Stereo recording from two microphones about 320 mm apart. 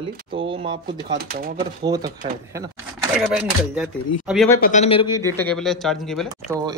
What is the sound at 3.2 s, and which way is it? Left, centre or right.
Speech, centre.